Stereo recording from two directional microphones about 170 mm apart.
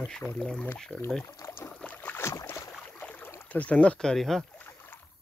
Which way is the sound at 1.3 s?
15° left (ahead or behind).